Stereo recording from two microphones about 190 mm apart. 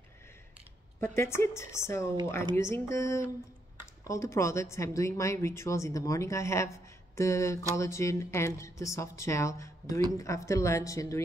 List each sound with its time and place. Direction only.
1.0 s speech: 15° left (ahead or behind)